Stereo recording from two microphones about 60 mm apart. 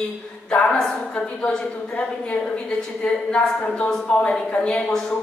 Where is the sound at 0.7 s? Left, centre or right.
Centre.